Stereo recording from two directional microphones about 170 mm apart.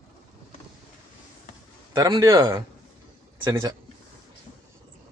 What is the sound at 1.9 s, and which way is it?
A man's voice, 20° right (ahead or behind).